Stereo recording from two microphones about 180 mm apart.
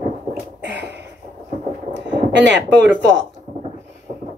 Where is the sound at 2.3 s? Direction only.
80° right.